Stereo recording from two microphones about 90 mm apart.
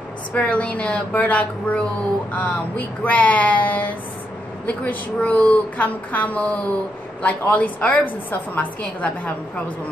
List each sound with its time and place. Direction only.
0.3 s a woman's voice: 15° left (ahead or behind)